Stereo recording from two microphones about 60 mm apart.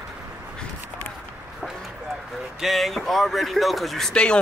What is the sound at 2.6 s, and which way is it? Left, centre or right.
Speech, centre.